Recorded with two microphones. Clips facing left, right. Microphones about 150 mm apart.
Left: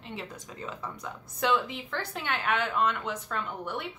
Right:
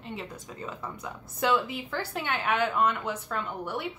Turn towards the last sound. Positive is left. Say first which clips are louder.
# right 2 dB
turn(degrees=0)  # may be behind; listen again after turning